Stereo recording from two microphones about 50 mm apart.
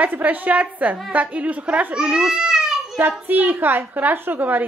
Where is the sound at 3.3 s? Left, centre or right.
Right.